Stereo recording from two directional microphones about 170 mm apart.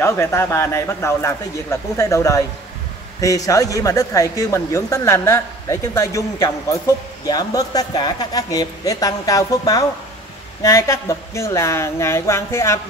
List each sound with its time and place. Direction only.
0.0 s speech: 15° left (ahead or behind)
7.2 s speech: 20° left (ahead or behind)